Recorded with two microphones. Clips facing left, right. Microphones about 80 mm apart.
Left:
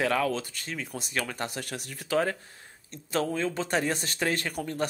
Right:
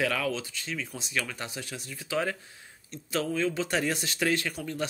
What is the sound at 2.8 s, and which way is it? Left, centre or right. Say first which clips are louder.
Speech: left 2 dB; left.